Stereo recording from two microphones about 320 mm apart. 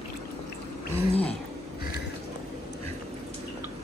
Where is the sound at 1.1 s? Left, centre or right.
Centre.